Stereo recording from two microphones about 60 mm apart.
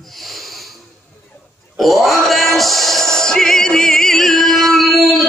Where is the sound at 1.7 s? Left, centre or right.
Centre.